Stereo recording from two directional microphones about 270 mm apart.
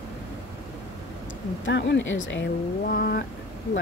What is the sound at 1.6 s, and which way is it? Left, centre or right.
Speech, left.